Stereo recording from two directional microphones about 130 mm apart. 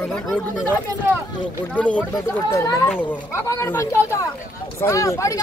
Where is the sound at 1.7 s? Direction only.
10° left (ahead or behind).